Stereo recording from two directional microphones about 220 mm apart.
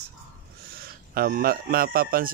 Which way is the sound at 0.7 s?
40° right (ahead or behind).